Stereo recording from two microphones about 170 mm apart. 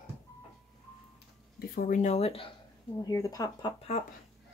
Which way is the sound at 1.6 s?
60° left (ahead or behind).